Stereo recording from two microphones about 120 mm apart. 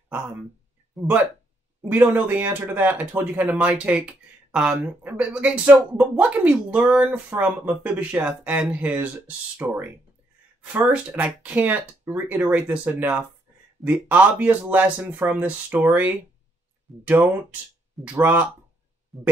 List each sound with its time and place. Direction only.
1.9 s speech: 15° right (ahead or behind)
19.1 s speech: centre (ahead or behind)